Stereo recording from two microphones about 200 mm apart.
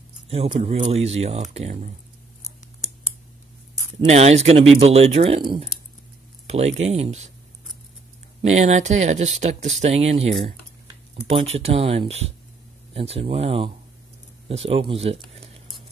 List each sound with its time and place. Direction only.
0.3 s speech: 25° right (ahead or behind)
4.1 s speech: 30° right (ahead or behind)
8.4 s speech: 35° right (ahead or behind)